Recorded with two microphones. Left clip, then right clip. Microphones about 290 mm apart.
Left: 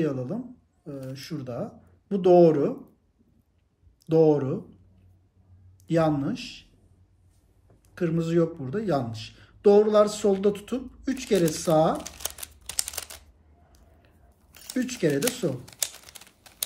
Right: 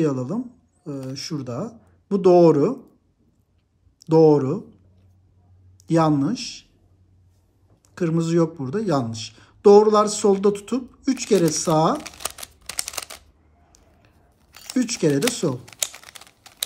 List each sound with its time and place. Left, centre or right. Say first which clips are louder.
0.0 s speech: right 5 dB; centre
4.0 s speech: right 5 dB; centre
5.8 s speech: right 5 dB; centre
7.8 s speech: right 4 dB; centre
13.7 s a sound: right 4 dB; centre